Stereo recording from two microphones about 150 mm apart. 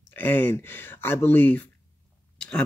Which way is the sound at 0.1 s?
15° left (ahead or behind).